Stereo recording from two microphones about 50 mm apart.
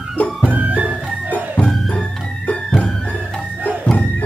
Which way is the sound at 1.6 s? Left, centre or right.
Centre.